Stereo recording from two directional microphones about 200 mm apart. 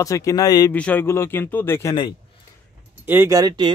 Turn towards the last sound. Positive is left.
turn(degrees=-20)  # may be behind; listen again after turning